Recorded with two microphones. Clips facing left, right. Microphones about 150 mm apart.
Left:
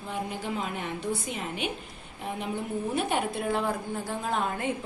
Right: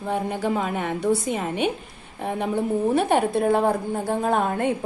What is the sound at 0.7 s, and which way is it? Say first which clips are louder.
Speech: right 9 dB; 65° right (ahead or behind).